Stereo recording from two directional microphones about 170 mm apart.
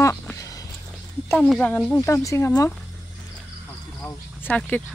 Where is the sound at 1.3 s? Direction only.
5° left (ahead or behind).